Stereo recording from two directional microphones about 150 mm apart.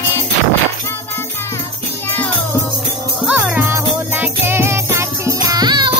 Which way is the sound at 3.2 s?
10° right (ahead or behind).